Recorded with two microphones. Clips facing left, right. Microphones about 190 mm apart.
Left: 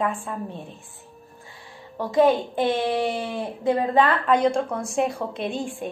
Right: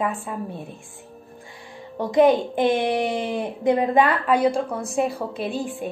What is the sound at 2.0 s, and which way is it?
A woman's voice, 15° right (ahead or behind).